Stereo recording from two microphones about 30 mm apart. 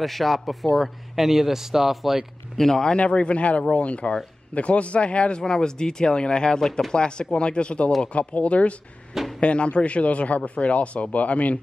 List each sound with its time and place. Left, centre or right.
0.0 s speech: centre
2.5 s speech: centre
3.0 s speech: left
5.4 s speech: left
8.1 s speech: left